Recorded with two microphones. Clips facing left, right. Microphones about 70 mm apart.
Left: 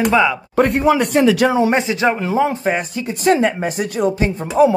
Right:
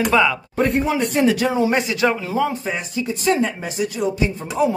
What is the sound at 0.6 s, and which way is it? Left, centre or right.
Speech, left.